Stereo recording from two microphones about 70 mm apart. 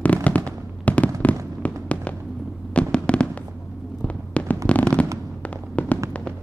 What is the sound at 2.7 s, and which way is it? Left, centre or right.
Fireworks, centre.